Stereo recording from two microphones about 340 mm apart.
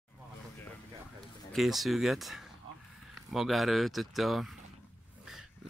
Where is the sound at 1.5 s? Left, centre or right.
Centre.